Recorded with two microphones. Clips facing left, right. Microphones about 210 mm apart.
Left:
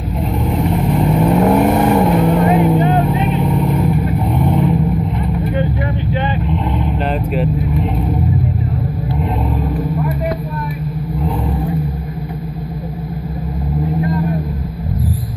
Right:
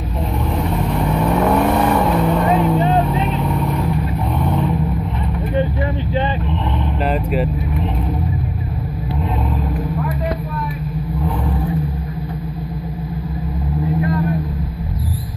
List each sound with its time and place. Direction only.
0.9 s vehicle: 20° left (ahead or behind)